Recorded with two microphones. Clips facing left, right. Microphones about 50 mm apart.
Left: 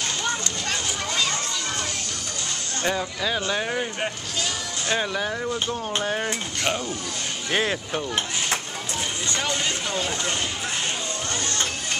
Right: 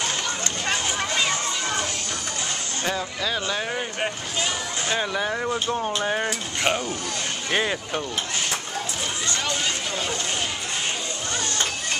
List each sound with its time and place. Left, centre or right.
0.4 s a sound: right
2.8 s speech: centre
4.8 s speech: centre
5.4 s speech: right
6.0 s speech: centre
7.5 s speech: centre